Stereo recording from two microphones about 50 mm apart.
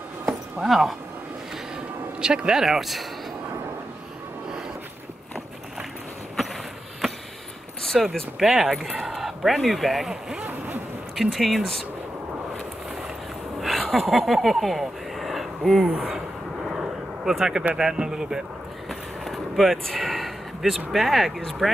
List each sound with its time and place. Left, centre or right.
0.6 s speech: centre
2.1 s speech: centre
2.6 s speech: centre
7.8 s speech: centre
11.1 s speech: centre
13.6 s speech: centre
16.6 s vehicle: centre
17.7 s speech: centre
18.9 s a sound: centre